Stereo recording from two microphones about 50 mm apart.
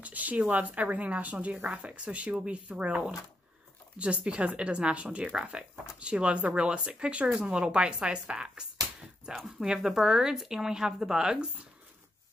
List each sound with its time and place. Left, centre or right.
0.0 s a woman's voice: right
9.3 s speech: centre